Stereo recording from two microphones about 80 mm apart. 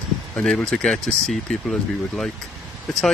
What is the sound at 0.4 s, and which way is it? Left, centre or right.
Speech, centre.